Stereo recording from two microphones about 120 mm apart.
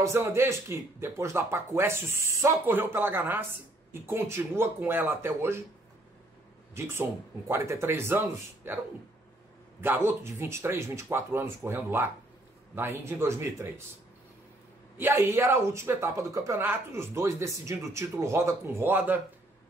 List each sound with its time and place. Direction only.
0.0 s speech: 25° right (ahead or behind)
6.7 s speech: 20° right (ahead or behind)
9.8 s speech: 20° right (ahead or behind)
15.0 s speech: 20° right (ahead or behind)